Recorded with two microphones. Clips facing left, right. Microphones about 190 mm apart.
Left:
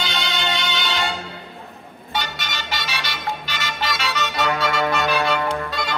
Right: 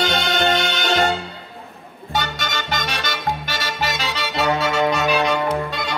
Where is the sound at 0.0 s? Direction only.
50° right (ahead or behind).